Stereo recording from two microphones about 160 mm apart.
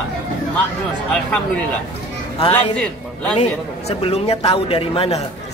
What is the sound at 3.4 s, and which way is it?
A man's voice, 40° left (ahead or behind).